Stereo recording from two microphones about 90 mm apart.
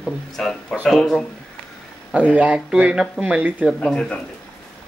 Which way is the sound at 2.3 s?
15° right (ahead or behind).